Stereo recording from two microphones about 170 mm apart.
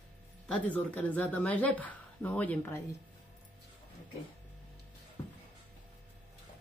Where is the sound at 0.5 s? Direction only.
10° left (ahead or behind).